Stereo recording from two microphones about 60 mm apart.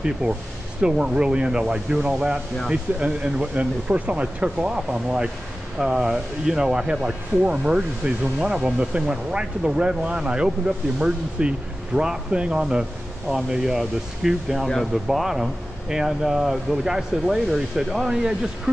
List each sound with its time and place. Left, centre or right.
0.2 s speech: right
0.7 s speech: centre